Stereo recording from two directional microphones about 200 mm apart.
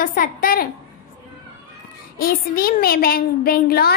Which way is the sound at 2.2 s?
45° left (ahead or behind).